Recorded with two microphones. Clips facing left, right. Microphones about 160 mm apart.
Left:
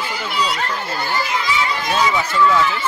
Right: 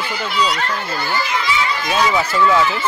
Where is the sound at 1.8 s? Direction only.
Centre (ahead or behind).